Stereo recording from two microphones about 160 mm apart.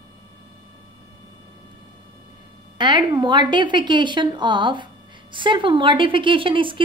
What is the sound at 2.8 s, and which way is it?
A woman's voice, 30° right (ahead or behind).